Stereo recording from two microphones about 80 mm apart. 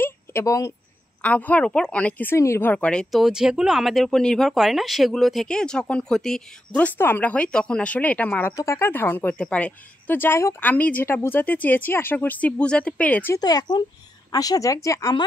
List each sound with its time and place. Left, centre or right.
0.0 s a sound: left
0.5 s a woman's voice: left
1.2 s a woman's voice: centre
2.3 s speech: left
2.6 s a woman's voice: centre
3.1 s a woman's voice: centre; by 8.5 s left
8.5 s speech: left; by 13.3 s centre
13.4 s a woman's voice: left